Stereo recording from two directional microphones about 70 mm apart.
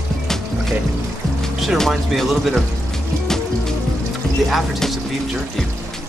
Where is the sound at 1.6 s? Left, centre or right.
Centre.